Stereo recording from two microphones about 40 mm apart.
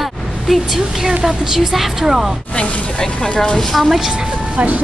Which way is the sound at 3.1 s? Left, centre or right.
Left.